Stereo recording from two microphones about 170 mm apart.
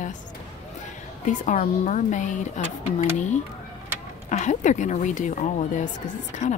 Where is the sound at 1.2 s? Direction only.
50° left (ahead or behind).